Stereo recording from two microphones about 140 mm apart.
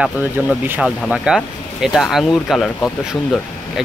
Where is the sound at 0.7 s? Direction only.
Centre (ahead or behind).